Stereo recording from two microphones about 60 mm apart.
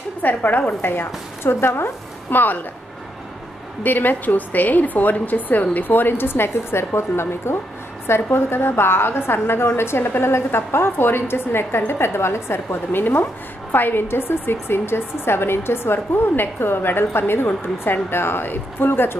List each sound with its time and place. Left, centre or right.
0.2 s a woman's voice: left
2.3 s a woman's voice: left
3.8 s a woman's voice: left